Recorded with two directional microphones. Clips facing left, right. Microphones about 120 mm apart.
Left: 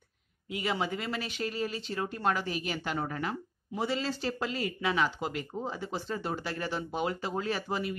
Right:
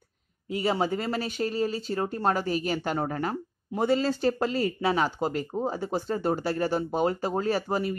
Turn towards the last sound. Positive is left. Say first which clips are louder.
# right 6 dB
turn(degrees=-40)  # may be behind; listen again after turning